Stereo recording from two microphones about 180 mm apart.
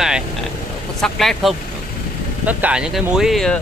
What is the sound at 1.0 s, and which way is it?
Speech, centre (ahead or behind).